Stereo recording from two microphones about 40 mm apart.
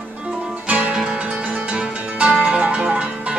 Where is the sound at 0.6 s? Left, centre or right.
Right.